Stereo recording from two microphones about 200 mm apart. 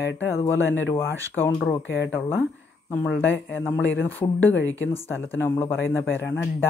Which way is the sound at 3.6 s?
10° left (ahead or behind).